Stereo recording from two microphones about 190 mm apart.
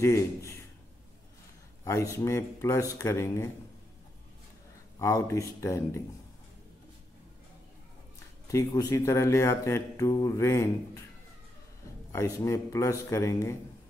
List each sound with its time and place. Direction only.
0.0 s speech: 15° left (ahead or behind)
1.9 s speech: 15° left (ahead or behind)
4.9 s speech: 15° left (ahead or behind)
8.5 s speech: 15° left (ahead or behind)
12.1 s speech: 15° left (ahead or behind)